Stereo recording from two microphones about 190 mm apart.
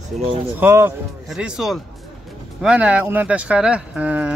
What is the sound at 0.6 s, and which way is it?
Speech, 10° right (ahead or behind).